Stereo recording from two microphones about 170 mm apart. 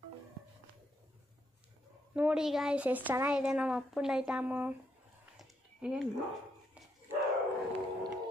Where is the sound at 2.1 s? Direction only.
5° right (ahead or behind).